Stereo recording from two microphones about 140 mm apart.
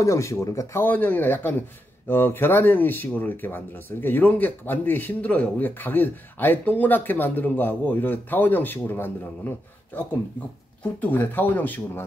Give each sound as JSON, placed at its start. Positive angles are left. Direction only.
{"t": 0.0, "sound": "speech", "side_deg": 20}